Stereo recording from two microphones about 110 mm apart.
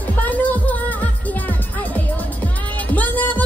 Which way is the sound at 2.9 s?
15° left (ahead or behind).